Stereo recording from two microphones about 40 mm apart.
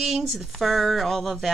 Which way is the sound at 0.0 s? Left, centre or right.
Centre.